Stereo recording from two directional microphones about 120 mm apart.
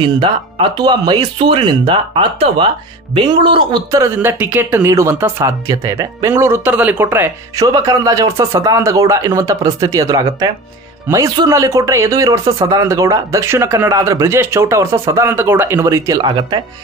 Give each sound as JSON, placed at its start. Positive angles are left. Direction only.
{"t": 0.0, "sound": "speech", "side_deg": -45}
{"t": 2.3, "sound": "speech", "side_deg": -55}
{"t": 3.2, "sound": "speech", "side_deg": -45}
{"t": 4.2, "sound": "speech", "side_deg": -15}
{"t": 7.5, "sound": "speech", "side_deg": -30}
{"t": 16.2, "sound": "speech", "side_deg": -40}